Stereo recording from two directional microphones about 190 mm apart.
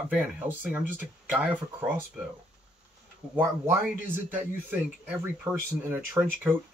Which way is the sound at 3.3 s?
10° right (ahead or behind).